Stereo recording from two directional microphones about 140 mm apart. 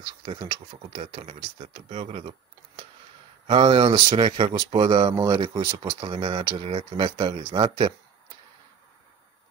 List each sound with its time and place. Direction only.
0.0 s speech: 40° right (ahead or behind)
5.5 s speech: 25° right (ahead or behind)
6.0 s speech: 40° right (ahead or behind)